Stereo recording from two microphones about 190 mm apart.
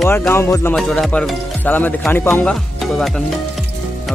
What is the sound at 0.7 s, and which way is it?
Speech, centre (ahead or behind).